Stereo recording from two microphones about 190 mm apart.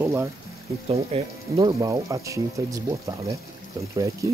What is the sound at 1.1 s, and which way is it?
Speech, 30° right (ahead or behind).